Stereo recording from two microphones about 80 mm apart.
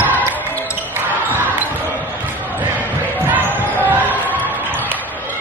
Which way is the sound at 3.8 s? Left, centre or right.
Right.